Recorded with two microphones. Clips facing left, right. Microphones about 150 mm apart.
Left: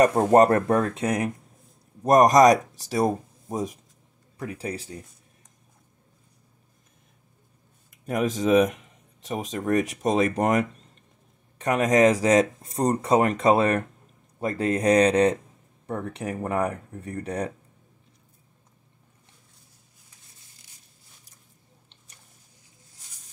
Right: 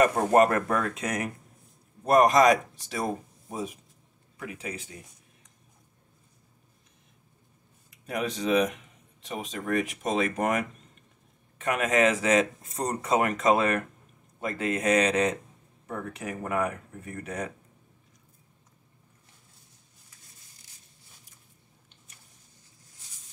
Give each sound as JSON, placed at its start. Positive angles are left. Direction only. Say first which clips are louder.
{"t": 0.0, "sound": "speech", "louder": "left 4 dB", "side_deg": 35}
{"t": 2.0, "sound": "speech", "louder": "left 4 dB", "side_deg": 40}
{"t": 8.1, "sound": "speech", "louder": "left 5 dB", "side_deg": 40}